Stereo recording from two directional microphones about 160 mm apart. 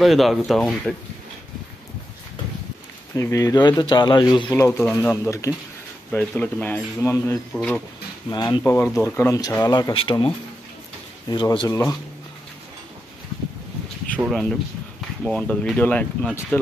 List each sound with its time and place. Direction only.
0.0 s speech: centre (ahead or behind)
3.2 s speech: 20° left (ahead or behind)
4.5 s speech: 15° left (ahead or behind)
7.5 s speech: 5° left (ahead or behind)
8.3 s speech: 25° left (ahead or behind)
14.2 s speech: centre (ahead or behind)